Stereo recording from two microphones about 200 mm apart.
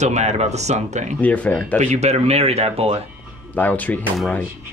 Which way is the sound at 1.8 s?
35° right (ahead or behind).